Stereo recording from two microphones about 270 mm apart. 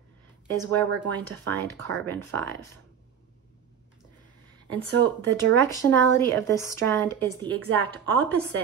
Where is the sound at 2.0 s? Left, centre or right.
Centre.